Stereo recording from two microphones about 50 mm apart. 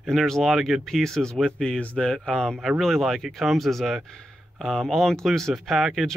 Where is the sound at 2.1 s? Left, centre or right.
Centre.